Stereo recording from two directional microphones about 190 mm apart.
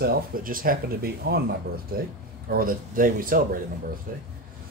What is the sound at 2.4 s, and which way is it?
Speech, 50° right (ahead or behind).